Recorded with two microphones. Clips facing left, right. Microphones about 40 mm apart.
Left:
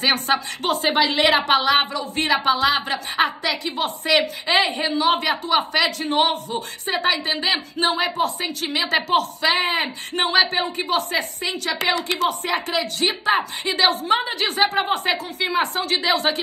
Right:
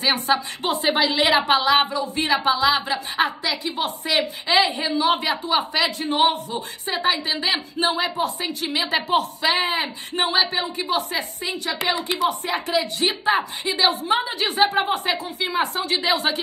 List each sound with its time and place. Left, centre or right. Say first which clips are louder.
0.0 s a woman's voice: left 1 dB; left
1.9 s speech: even; left
2.3 s a woman's voice: even; left